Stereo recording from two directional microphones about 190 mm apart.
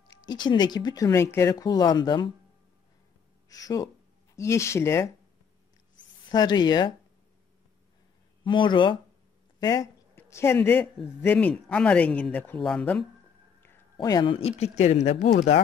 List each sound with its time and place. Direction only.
0.2 s speech: 20° left (ahead or behind)
3.4 s speech: 20° left (ahead or behind)
5.9 s a sound: 20° left (ahead or behind)
8.5 s speech: 25° left (ahead or behind); by 13.0 s 5° left (ahead or behind)
13.9 s speech: 20° left (ahead or behind); by 15.2 s 35° left (ahead or behind)